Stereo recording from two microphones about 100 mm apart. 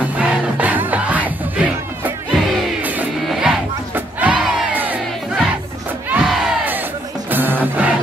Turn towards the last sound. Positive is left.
turn(degrees=-20)  # may be behind; listen again after turning